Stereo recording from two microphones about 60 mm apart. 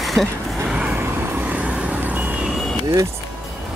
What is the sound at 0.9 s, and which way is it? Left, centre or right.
Vehicle, right.